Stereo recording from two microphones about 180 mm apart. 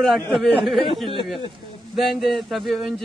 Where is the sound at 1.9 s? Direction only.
Centre (ahead or behind).